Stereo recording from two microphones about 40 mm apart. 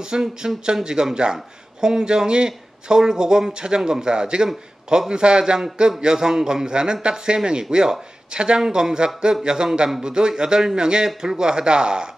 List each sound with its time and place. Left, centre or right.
0.0 s a man's voice: centre